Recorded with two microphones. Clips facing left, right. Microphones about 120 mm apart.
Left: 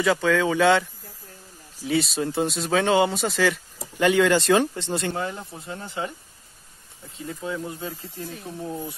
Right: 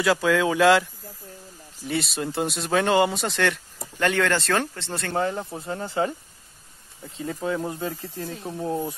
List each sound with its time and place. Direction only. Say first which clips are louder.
0.0 s speech: even; 5° right (ahead or behind); by 5.1 s 15° left (ahead or behind)
5.1 s speech: right 5 dB; 30° right (ahead or behind)
7.3 s speech: right 4 dB; 30° right (ahead or behind)